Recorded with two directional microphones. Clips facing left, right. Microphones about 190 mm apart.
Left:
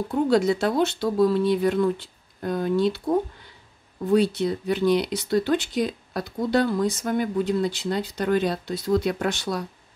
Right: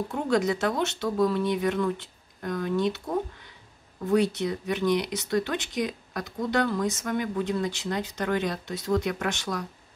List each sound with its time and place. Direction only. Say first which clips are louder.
0.1 s speech: left 6 dB; 30° left (ahead or behind)
4.1 s speech: left 3 dB; 30° left (ahead or behind)